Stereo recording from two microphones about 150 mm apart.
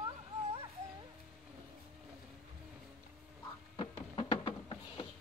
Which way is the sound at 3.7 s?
35° left (ahead or behind).